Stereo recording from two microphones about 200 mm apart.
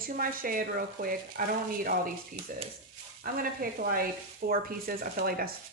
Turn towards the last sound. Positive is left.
turn(degrees=-50)  # may be behind; listen again after turning